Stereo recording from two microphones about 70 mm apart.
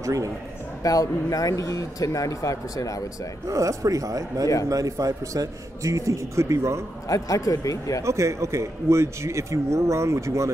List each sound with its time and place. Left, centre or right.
0.0 s speech: right
0.8 s speech: left
3.4 s speech: right
7.1 s speech: left
8.0 s speech: right